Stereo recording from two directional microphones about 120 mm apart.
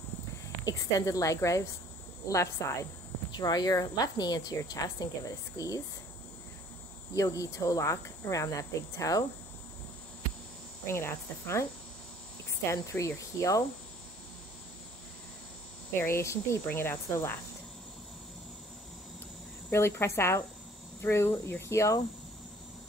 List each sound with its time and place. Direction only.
0.7 s cricket: 30° left (ahead or behind)
3.3 s a woman's voice: 35° left (ahead or behind)
7.2 s cricket: 30° left (ahead or behind)
10.9 s cricket: 20° left (ahead or behind)
12.6 s cricket: 25° left (ahead or behind)
16.0 s cricket: 20° left (ahead or behind)
19.7 s cricket: 20° left (ahead or behind)